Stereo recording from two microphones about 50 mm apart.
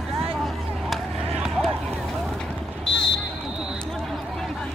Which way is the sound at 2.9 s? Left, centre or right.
Centre.